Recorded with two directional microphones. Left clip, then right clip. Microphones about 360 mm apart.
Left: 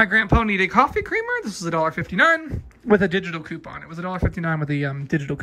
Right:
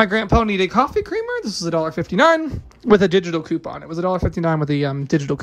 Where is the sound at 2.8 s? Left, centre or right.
Left.